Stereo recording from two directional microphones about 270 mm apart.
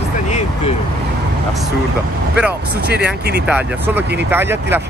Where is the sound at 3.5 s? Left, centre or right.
Centre.